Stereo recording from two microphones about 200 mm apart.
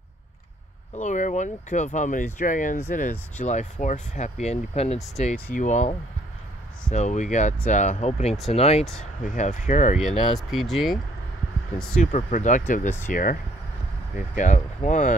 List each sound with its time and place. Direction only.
0.9 s speech: 40° left (ahead or behind)
9.9 s speech: centre (ahead or behind)
12.3 s speech: 40° left (ahead or behind)